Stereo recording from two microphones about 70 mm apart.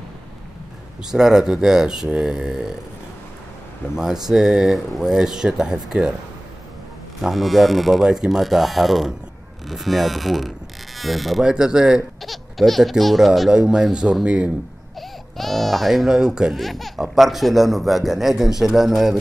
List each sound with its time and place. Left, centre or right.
1.0 s speech: centre
3.9 s speech: centre
7.2 s speech: centre
12.2 s speech: centre
15.0 s speech: centre
16.5 s speech: centre